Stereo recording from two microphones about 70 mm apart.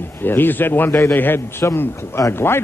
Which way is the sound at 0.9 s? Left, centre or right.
Left.